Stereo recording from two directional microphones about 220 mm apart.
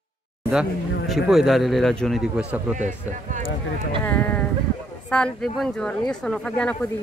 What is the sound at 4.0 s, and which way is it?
Speech, 10° left (ahead or behind).